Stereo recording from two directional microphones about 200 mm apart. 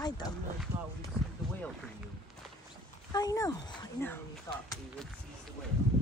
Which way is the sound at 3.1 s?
15° left (ahead or behind).